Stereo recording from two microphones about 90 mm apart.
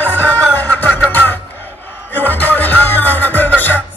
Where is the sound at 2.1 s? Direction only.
20° left (ahead or behind).